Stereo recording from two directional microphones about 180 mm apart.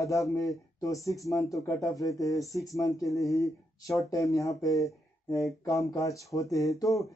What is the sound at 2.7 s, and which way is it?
Speech, 20° left (ahead or behind).